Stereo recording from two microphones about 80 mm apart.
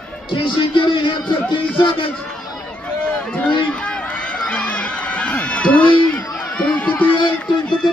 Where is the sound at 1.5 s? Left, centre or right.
Left.